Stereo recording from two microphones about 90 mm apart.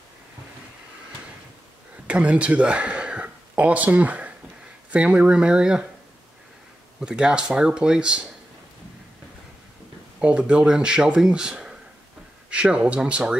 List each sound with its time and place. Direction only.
2.0 s speech: 15° right (ahead or behind)
7.0 s speech: 10° right (ahead or behind)
10.2 s speech: 10° right (ahead or behind)